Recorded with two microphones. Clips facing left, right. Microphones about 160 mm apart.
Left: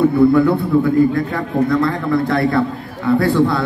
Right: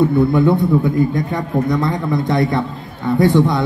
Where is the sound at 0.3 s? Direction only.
20° right (ahead or behind).